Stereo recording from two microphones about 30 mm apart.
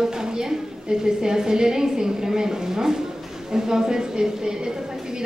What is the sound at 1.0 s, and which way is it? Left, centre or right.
Speech, right.